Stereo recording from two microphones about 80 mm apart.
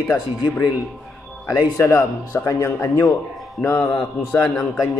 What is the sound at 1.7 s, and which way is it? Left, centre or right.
Speech, left.